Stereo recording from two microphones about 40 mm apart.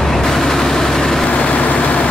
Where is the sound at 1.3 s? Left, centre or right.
Left.